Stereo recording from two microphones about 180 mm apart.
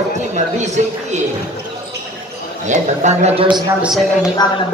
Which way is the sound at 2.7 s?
40° right (ahead or behind).